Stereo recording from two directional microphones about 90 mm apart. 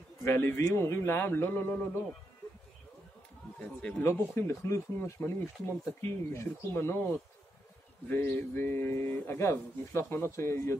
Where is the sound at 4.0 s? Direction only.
25° left (ahead or behind).